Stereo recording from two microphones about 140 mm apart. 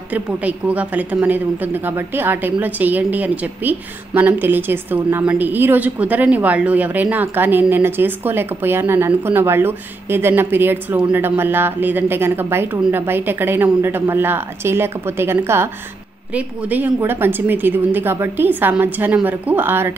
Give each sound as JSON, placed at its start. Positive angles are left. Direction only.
{"t": 0.1, "sound": "a woman's voice", "side_deg": -10}